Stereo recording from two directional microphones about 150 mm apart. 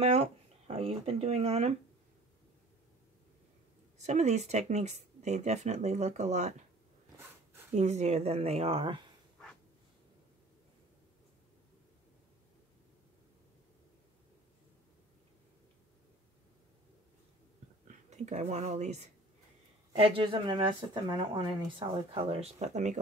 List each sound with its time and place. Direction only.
0.0 s speech: 40° right (ahead or behind)
4.0 s speech: 50° right (ahead or behind)
7.7 s speech: 50° right (ahead or behind)
17.8 s speech: 50° right (ahead or behind)